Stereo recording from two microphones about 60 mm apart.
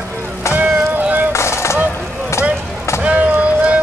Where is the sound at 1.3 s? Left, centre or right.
Left.